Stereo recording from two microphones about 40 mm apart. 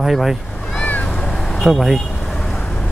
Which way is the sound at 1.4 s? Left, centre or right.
Centre.